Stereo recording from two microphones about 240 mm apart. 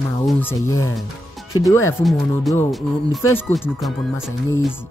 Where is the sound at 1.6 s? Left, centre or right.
Centre.